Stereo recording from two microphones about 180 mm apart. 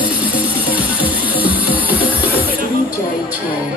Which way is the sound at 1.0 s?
10° right (ahead or behind).